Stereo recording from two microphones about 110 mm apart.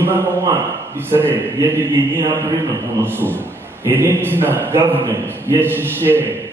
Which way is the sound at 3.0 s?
20° right (ahead or behind).